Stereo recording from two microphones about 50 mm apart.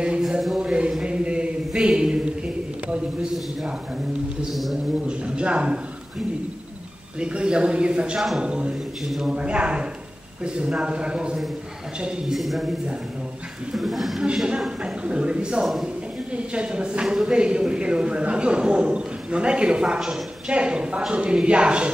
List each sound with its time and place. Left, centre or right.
0.6 s a sound: centre
4.5 s speech: centre
5.0 s a man's voice: right
7.2 s a man's voice: centre
9.0 s speech: centre
9.3 s a man's voice: right
12.3 s speech: centre
13.7 s speech: centre
14.2 s a man's voice: centre
15.6 s speech: centre
16.5 s a man's voice: centre